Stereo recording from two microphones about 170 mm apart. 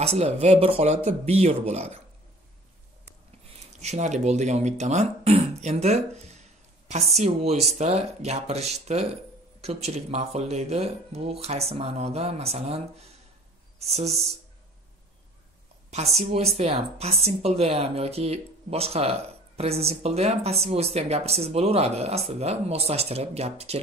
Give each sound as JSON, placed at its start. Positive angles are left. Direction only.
{"t": 0.0, "sound": "speech", "side_deg": -40}
{"t": 3.8, "sound": "speech", "side_deg": -45}
{"t": 16.2, "sound": "speech", "side_deg": -35}